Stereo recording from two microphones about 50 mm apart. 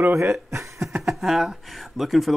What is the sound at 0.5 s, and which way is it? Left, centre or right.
Speech, right.